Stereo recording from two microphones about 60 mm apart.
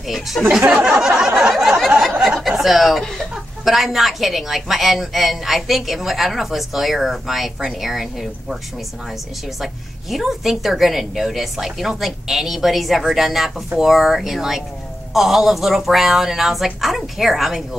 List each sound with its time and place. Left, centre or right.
0.1 s a woman's voice: centre
0.5 s speech: centre
1.5 s a sound: centre
2.2 s chuckle: centre
3.6 s a woman's voice: centre
9.6 s a woman's voice: centre